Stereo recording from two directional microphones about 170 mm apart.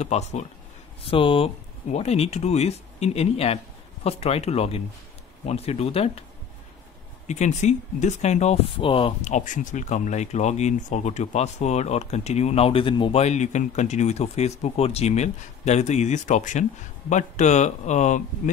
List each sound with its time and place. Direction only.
0.0 s speech: 40° left (ahead or behind)
1.1 s speech: 30° left (ahead or behind)
7.2 s speech: 45° left (ahead or behind)
9.2 s speech: 45° left (ahead or behind)